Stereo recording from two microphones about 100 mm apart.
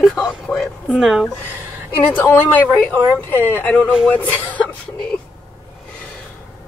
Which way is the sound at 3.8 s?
10° right (ahead or behind).